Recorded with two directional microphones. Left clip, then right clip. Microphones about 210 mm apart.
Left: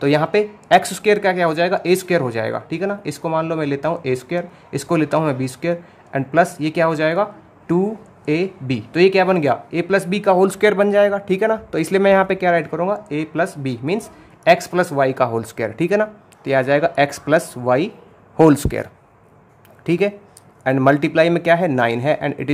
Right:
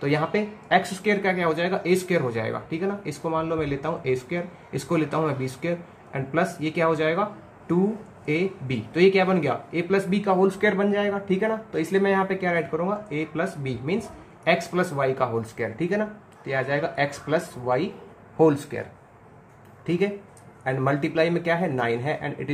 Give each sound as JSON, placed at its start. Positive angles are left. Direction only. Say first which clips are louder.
{"t": 0.0, "sound": "speech", "louder": "left 8 dB", "side_deg": 50}